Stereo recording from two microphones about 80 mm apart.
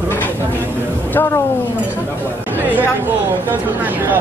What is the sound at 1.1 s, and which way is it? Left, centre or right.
Speech, left.